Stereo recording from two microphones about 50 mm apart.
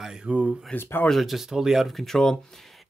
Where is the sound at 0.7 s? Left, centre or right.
Left.